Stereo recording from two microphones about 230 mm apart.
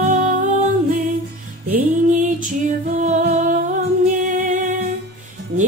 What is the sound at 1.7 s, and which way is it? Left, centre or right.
Music, right.